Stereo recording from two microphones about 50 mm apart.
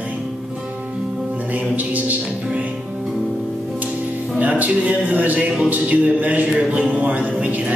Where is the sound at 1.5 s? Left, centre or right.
Right.